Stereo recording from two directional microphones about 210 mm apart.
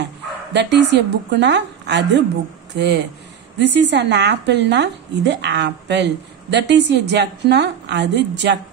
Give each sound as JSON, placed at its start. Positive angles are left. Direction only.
{"t": 0.0, "sound": "a woman's voice", "side_deg": -55}